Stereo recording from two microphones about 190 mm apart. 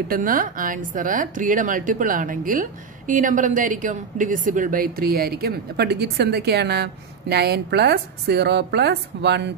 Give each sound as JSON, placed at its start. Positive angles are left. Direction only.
{"t": 0.1, "sound": "a woman's voice", "side_deg": -45}